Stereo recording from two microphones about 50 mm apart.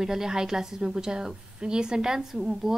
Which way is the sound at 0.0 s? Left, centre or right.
Centre.